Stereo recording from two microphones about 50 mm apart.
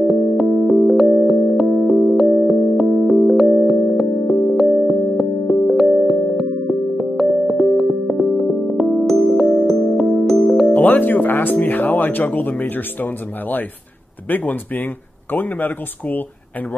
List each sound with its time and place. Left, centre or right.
0.0 s music: centre
10.7 s music: left
11.6 s speech: left